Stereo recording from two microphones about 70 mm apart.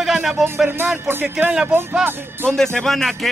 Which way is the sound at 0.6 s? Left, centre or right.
Right.